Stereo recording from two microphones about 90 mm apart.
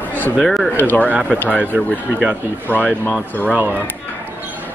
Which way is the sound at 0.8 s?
20° left (ahead or behind).